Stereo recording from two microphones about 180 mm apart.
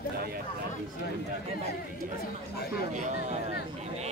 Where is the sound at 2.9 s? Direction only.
40° right (ahead or behind).